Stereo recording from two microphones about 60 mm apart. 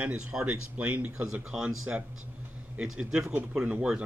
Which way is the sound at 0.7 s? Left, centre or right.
Right.